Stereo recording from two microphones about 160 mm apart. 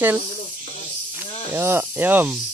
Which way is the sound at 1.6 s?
15° right (ahead or behind).